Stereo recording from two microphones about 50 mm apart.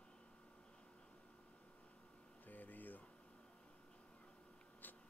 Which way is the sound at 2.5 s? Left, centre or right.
Left.